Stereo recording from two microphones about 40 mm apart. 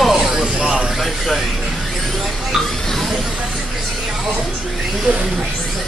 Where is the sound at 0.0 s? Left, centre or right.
Centre.